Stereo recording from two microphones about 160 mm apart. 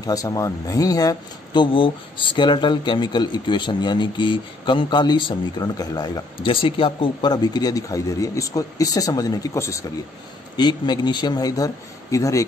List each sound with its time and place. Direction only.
0.0 s speech: 20° left (ahead or behind)